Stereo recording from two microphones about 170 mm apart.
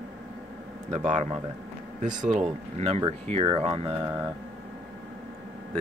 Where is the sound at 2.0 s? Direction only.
50° right (ahead or behind).